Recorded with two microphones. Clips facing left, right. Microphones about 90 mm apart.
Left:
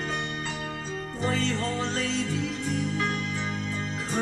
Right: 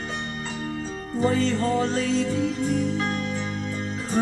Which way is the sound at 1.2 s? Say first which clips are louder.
Right 6 dB; 40° right (ahead or behind).